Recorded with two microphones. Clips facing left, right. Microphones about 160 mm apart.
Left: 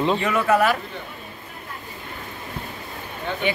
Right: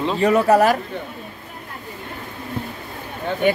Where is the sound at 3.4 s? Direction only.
45° right (ahead or behind).